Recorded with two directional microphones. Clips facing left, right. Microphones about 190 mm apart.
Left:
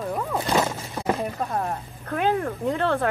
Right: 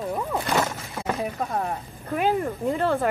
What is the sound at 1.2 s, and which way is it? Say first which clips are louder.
Speech: even; centre (ahead or behind).